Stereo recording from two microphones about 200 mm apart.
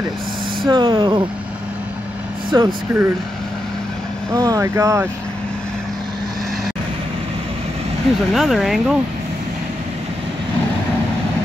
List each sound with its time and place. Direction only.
0.7 s speech: 20° right (ahead or behind)
2.5 s speech: 15° right (ahead or behind)
4.3 s speech: 15° right (ahead or behind)
8.3 s speech: centre (ahead or behind)